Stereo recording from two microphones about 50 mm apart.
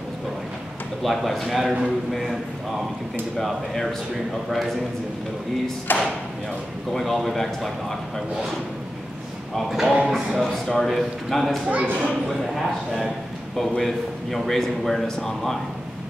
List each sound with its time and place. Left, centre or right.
1.0 s a man's voice: centre
4.5 s a man's voice: centre
5.9 s speech: left
6.9 s a man's voice: centre
9.7 s speech: centre
10.4 s a man's voice: centre
11.7 s speech: right
12.3 s a man's voice: centre